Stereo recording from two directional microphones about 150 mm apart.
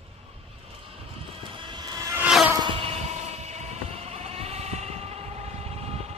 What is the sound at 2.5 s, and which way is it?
Sheep, 35° right (ahead or behind).